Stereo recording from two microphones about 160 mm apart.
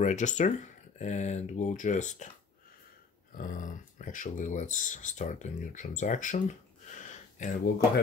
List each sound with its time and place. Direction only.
0.0 s speech: 50° left (ahead or behind)
3.3 s speech: 55° left (ahead or behind)